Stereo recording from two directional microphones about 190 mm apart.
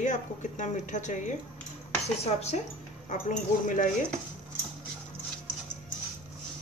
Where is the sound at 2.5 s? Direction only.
35° left (ahead or behind).